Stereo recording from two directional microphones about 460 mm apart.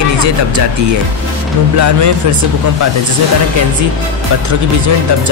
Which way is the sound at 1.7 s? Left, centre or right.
Right.